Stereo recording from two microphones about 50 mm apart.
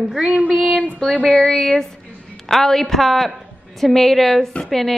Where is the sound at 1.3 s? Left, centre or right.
Centre.